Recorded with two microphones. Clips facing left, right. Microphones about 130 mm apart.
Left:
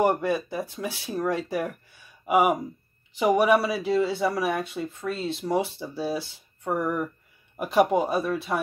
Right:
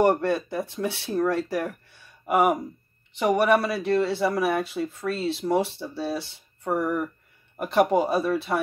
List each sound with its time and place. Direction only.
0.0 s speech: centre (ahead or behind)